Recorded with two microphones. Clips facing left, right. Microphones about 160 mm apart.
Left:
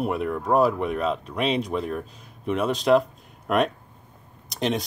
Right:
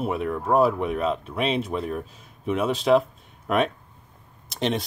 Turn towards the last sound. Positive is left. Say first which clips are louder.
# even
turn(degrees=0)  # may be behind; listen again after turning